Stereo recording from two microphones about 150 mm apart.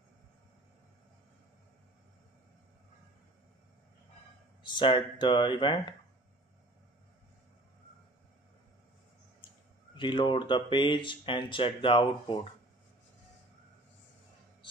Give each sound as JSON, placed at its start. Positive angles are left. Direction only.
{"t": 4.6, "sound": "speech", "side_deg": 30}
{"t": 9.9, "sound": "speech", "side_deg": 30}